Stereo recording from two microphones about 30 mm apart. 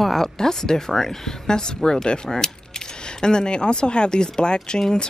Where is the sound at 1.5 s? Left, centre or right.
Left.